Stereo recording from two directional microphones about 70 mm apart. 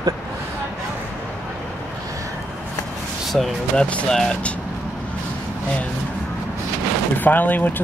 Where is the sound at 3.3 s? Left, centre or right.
Centre.